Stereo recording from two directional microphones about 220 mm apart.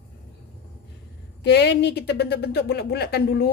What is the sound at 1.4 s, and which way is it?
A woman's voice, 50° left (ahead or behind).